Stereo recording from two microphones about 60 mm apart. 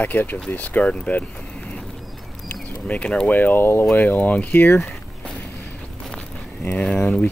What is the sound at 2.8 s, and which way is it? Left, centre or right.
Speech, left.